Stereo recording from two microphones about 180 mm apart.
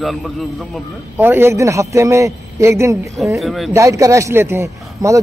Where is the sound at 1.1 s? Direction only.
10° right (ahead or behind).